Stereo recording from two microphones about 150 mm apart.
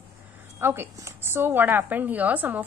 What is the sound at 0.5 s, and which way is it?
A woman's voice, 15° right (ahead or behind).